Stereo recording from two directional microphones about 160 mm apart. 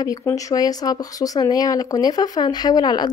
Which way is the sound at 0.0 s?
20° left (ahead or behind).